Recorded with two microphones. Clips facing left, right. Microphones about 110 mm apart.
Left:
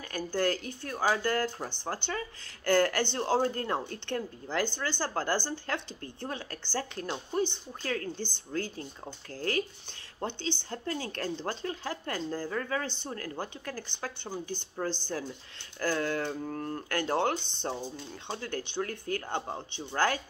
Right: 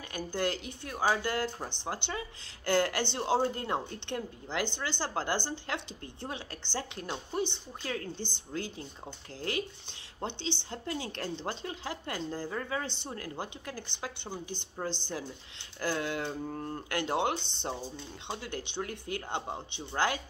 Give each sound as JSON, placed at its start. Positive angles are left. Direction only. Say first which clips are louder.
{"t": 0.1, "sound": "speech", "louder": "left 3 dB", "side_deg": -20}
{"t": 10.2, "sound": "speech", "louder": "left 2 dB", "side_deg": -20}